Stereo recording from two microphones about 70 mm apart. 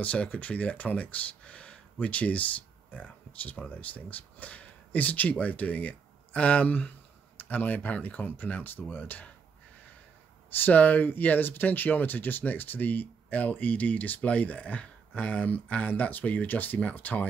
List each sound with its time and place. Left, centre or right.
0.0 s speech: centre
10.6 s speech: left